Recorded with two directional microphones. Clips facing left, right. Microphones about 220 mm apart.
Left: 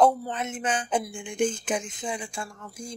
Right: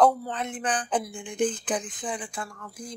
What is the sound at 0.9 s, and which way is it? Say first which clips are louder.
Speech: left 1 dB; 10° left (ahead or behind).